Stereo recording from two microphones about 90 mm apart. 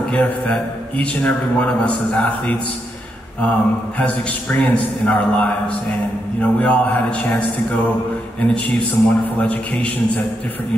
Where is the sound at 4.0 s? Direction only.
15° left (ahead or behind).